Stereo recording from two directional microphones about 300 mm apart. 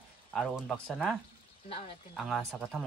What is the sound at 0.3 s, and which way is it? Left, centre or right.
Speech, centre.